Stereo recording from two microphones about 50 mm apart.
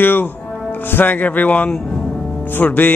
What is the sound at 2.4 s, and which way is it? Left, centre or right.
Speech, left.